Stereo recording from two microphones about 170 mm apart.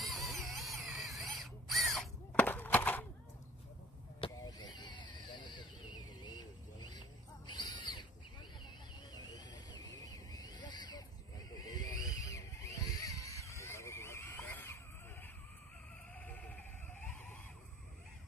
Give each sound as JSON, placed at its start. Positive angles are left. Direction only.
{"t": 0.0, "sound": "drill", "side_deg": 0}
{"t": 4.2, "sound": "vehicle", "side_deg": 25}
{"t": 7.5, "sound": "a sound", "side_deg": 25}
{"t": 16.2, "sound": "goat", "side_deg": 10}